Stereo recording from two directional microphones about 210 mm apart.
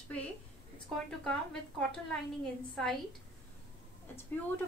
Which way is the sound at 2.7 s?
Centre (ahead or behind).